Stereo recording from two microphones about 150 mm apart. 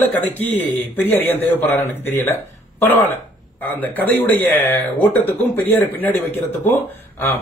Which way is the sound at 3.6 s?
10° left (ahead or behind).